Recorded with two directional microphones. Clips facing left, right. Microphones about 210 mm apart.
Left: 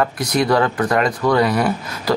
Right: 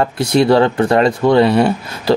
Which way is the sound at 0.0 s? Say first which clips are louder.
Right 5 dB; 30° right (ahead or behind).